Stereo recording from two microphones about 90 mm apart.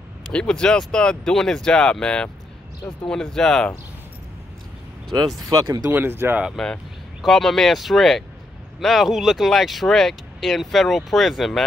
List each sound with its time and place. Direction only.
0.3 s speech: 10° left (ahead or behind)
5.4 s speech: 40° right (ahead or behind)
5.9 s speech: 25° right (ahead or behind)
6.5 s speech: 5° left (ahead or behind)